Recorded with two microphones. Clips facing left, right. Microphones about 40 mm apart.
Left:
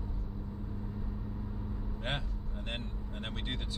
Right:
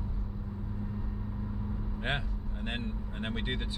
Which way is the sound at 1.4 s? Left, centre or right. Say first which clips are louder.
Right 3 dB; centre.